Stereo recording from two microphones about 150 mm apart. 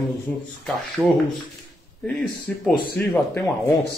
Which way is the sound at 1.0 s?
5° left (ahead or behind).